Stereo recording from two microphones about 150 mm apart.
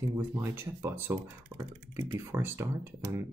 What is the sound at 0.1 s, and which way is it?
Speech, 15° right (ahead or behind).